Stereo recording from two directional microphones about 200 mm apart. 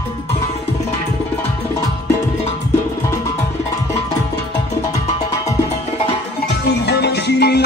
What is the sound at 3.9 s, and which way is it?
Music, 15° left (ahead or behind).